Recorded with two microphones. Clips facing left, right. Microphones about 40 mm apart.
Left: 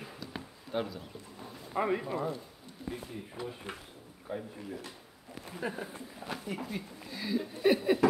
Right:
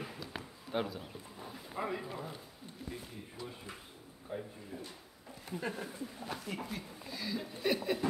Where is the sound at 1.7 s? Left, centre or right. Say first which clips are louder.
Left 8 dB; left.